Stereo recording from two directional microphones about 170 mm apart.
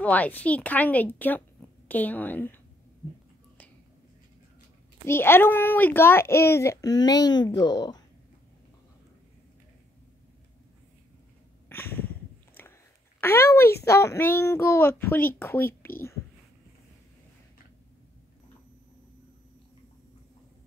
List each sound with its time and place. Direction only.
0.0 s a child's voice: 10° left (ahead or behind)
5.0 s a child's voice: 15° left (ahead or behind)
11.7 s a sound: 15° left (ahead or behind)
13.2 s a child's voice: 15° left (ahead or behind)